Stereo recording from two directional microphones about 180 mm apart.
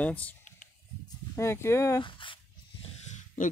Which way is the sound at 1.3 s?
15° left (ahead or behind).